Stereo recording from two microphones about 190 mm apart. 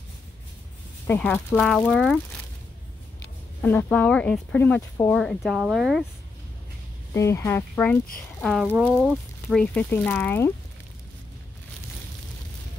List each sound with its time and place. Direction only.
1.0 s speech: 10° left (ahead or behind)
3.6 s speech: 10° left (ahead or behind)
7.2 s speech: 15° left (ahead or behind)